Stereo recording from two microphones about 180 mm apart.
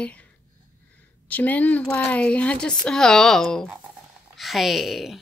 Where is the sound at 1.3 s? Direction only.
10° left (ahead or behind).